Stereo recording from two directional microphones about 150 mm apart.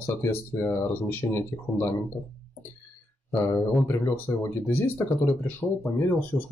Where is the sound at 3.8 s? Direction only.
15° left (ahead or behind).